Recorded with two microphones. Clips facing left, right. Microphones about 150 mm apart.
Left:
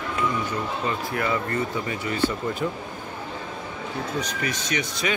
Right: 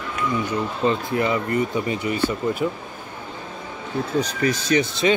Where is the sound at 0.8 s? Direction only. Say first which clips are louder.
Right 8 dB; 20° right (ahead or behind).